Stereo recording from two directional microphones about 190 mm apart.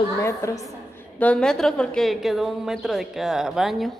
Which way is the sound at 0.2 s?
15° left (ahead or behind).